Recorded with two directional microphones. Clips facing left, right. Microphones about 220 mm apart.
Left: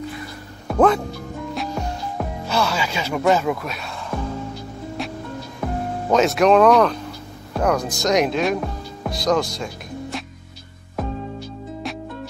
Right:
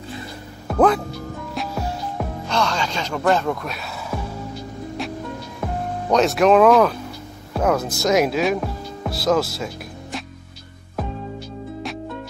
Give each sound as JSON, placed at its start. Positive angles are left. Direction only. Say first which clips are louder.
{"t": 0.7, "sound": "speech", "louder": "even", "side_deg": 0}
{"t": 1.5, "sound": "music", "louder": "even", "side_deg": 0}
{"t": 2.4, "sound": "speech", "louder": "even", "side_deg": 5}
{"t": 5.0, "sound": "music", "louder": "right 1 dB", "side_deg": 0}
{"t": 5.6, "sound": "speech", "louder": "left 1 dB", "side_deg": 0}
{"t": 10.1, "sound": "music", "louder": "right 3 dB", "side_deg": 0}
{"t": 11.9, "sound": "music", "louder": "left 2 dB", "side_deg": 0}